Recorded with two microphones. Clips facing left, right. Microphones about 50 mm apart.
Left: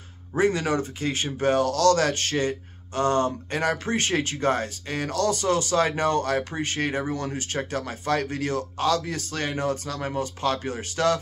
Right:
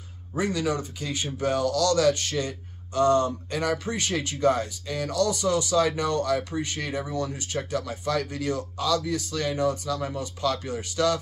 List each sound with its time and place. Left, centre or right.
0.3 s speech: left